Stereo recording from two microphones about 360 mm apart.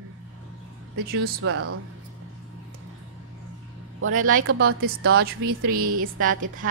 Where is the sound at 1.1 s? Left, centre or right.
Right.